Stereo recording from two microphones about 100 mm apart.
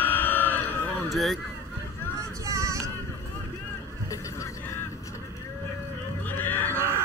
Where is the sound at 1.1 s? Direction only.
Centre (ahead or behind).